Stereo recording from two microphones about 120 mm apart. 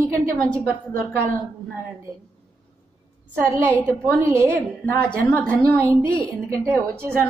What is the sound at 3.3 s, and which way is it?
Speech, 10° left (ahead or behind).